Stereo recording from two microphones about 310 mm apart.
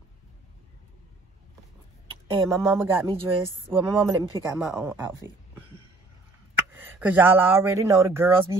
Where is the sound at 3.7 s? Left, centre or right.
Centre.